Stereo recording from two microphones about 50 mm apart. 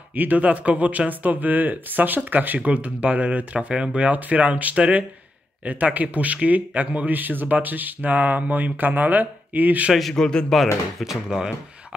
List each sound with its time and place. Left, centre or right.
0.1 s speech: right
10.1 s speech: centre
11.0 s speech: centre